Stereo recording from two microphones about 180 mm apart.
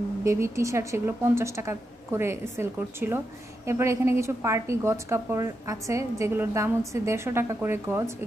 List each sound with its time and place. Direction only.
0.2 s a woman's voice: 15° right (ahead or behind)